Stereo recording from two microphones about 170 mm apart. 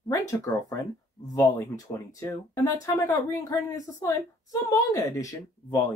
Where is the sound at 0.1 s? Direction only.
20° left (ahead or behind).